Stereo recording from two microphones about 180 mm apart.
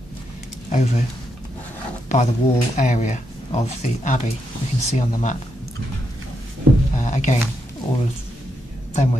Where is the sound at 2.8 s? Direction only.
45° left (ahead or behind).